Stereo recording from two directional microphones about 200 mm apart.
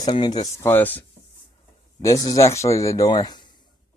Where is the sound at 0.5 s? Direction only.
10° left (ahead or behind).